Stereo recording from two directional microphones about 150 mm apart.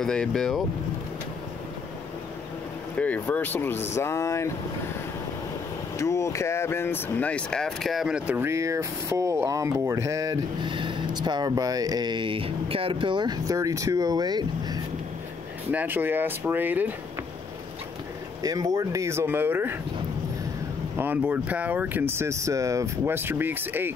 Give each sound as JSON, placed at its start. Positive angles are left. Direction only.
{"t": 0.0, "sound": "speech", "side_deg": 5}
{"t": 3.0, "sound": "speech", "side_deg": 10}
{"t": 5.9, "sound": "speech", "side_deg": 20}
{"t": 10.6, "sound": "speech", "side_deg": -35}
{"t": 15.7, "sound": "speech", "side_deg": -10}
{"t": 18.4, "sound": "speech", "side_deg": -25}
{"t": 20.9, "sound": "speech", "side_deg": -15}